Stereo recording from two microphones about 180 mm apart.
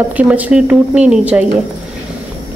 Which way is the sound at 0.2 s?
5° right (ahead or behind).